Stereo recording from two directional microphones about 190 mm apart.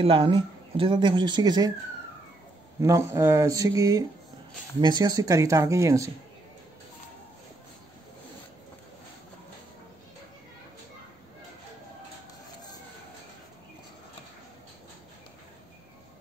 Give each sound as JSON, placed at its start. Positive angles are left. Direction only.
{"t": 0.0, "sound": "speech", "side_deg": -25}
{"t": 2.8, "sound": "speech", "side_deg": -15}